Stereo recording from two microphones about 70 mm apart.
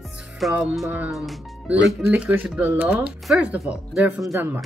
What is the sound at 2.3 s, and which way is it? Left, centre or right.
A woman's voice, right.